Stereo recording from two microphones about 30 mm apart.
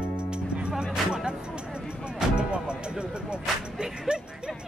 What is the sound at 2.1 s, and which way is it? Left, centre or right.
Music, right.